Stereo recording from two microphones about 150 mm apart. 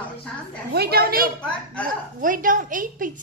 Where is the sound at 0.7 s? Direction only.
90° right.